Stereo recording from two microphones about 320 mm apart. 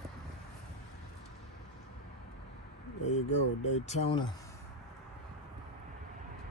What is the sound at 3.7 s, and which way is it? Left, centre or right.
Speech, centre.